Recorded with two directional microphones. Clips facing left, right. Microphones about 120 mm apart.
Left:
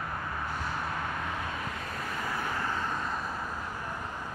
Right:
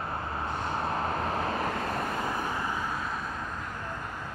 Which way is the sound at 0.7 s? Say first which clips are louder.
Right 4 dB; 35° right (ahead or behind).